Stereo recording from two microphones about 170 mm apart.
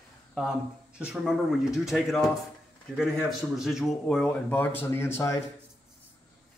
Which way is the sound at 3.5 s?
Centre (ahead or behind).